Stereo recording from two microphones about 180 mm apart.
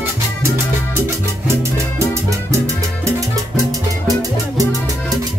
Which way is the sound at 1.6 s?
15° right (ahead or behind).